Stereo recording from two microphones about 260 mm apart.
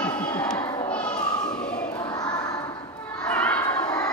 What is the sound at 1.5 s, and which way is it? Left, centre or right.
Choir, centre.